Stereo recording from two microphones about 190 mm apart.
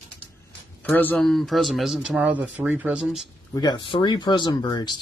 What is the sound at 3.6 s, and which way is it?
Speech, 20° left (ahead or behind).